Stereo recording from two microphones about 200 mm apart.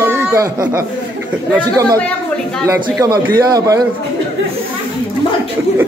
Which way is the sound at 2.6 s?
15° right (ahead or behind).